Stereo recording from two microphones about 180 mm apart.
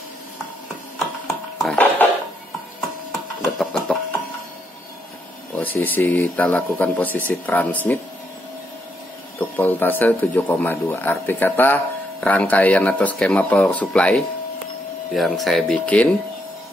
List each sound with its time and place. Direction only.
0.9 s a sound: centre (ahead or behind)
3.1 s printer: centre (ahead or behind)
5.6 s speech: 10° left (ahead or behind)
9.4 s speech: 10° left (ahead or behind)